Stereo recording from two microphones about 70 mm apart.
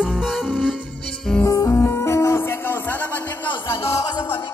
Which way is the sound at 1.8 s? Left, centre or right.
Left.